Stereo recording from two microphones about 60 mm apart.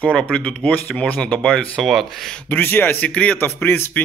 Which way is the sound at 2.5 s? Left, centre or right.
Left.